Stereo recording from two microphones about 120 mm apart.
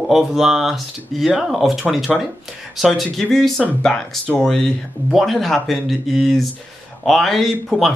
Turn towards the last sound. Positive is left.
turn(degrees=0)  # may be behind; listen again after turning